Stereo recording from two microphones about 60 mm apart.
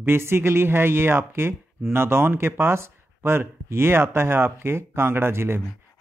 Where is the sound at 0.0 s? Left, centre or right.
Right.